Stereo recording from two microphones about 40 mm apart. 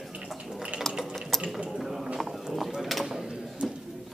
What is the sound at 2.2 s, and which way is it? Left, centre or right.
Horse, centre.